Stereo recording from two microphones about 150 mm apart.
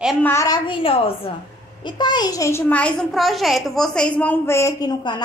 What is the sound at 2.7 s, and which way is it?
A child's voice, 10° left (ahead or behind).